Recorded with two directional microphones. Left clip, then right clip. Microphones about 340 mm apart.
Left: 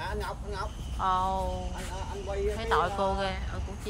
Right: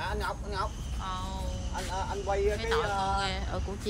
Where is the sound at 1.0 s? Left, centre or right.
Centre.